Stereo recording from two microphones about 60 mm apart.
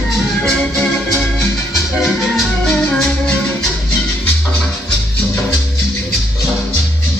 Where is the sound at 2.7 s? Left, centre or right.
Left.